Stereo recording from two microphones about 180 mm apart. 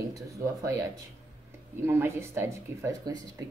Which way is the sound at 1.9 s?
15° right (ahead or behind).